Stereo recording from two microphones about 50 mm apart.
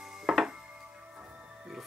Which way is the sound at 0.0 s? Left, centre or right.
Centre.